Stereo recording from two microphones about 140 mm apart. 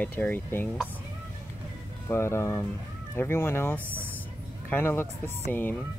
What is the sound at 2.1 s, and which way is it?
Speech, 20° left (ahead or behind).